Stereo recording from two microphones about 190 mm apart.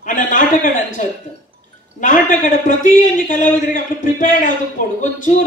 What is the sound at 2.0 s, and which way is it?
A man's voice, 45° left (ahead or behind).